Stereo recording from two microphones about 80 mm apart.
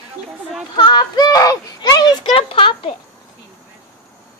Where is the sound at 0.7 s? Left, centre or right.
Left.